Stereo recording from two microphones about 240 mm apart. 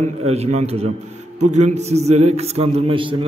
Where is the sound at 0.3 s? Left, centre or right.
Right.